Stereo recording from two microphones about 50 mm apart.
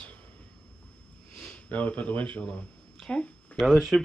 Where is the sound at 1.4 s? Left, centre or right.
Left.